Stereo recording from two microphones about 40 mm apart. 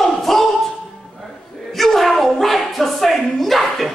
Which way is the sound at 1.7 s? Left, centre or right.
Centre.